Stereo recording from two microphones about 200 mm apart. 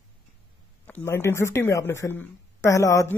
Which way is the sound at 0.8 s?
10° left (ahead or behind).